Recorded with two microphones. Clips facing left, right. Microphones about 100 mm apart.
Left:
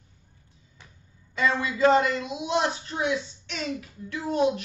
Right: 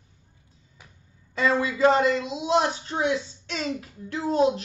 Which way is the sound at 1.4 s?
30° right (ahead or behind).